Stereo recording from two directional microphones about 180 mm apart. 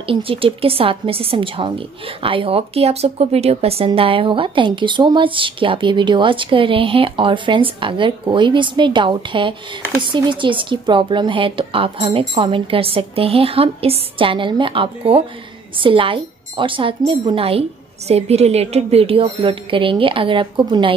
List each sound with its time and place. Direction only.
0.0 s a woman's voice: 30° right (ahead or behind)